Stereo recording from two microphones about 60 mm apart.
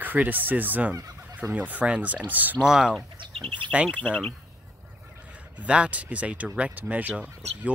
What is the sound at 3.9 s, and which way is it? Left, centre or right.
Speech, left.